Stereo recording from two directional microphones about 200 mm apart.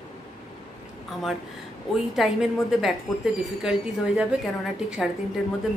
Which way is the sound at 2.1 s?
Centre (ahead or behind).